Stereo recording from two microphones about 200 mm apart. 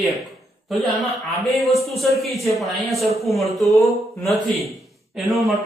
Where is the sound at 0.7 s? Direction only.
Centre (ahead or behind).